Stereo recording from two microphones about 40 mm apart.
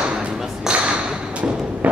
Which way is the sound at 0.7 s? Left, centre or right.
Centre.